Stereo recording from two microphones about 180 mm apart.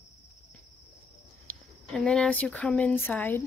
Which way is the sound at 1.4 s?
5° left (ahead or behind).